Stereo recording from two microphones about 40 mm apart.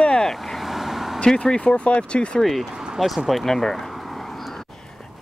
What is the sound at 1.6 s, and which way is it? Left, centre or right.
Speech, left.